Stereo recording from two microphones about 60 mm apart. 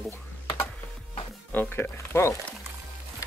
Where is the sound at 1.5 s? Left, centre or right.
Left.